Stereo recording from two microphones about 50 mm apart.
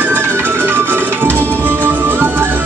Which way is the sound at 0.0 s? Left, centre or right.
Right.